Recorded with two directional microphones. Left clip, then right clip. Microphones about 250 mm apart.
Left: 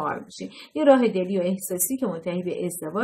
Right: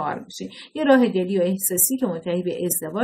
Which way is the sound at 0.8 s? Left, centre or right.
Right.